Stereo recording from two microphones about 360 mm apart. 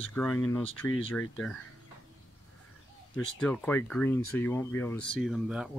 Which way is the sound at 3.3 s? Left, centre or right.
Centre.